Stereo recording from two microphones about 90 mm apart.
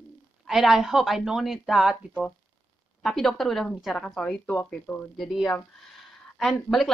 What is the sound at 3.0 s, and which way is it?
A woman's voice, centre (ahead or behind).